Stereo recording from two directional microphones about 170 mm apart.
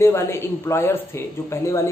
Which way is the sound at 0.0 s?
15° left (ahead or behind).